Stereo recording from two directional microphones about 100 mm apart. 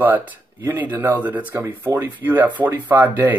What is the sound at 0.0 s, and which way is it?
Speech, 15° right (ahead or behind).